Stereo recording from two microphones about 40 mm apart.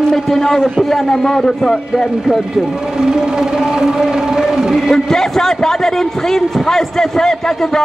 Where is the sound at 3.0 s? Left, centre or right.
Centre.